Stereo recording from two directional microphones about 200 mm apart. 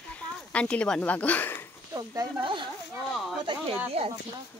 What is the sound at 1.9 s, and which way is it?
Speech, 20° right (ahead or behind).